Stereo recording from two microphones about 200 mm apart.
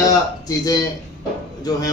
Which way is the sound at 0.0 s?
20° left (ahead or behind).